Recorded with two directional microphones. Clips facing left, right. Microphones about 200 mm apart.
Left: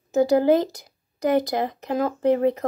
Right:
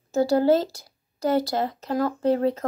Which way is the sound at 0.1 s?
15° left (ahead or behind).